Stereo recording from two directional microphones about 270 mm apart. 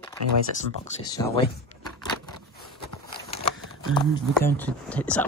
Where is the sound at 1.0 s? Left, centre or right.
Centre.